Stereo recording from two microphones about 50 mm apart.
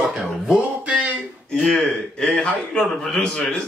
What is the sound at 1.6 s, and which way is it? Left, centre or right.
A man's voice, centre.